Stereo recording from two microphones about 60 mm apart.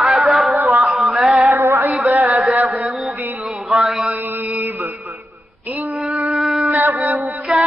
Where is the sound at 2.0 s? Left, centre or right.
Right.